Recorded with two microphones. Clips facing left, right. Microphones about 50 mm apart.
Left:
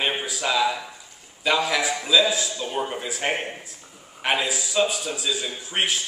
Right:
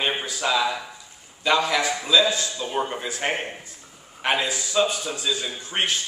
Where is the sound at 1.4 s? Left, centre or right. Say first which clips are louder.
Right 1 dB; centre.